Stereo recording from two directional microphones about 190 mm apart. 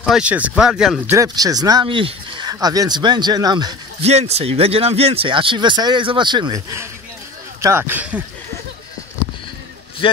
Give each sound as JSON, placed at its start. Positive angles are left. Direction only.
{"t": 0.0, "sound": "speech", "side_deg": -5}
{"t": 1.1, "sound": "speech", "side_deg": -20}
{"t": 4.0, "sound": "speech", "side_deg": -35}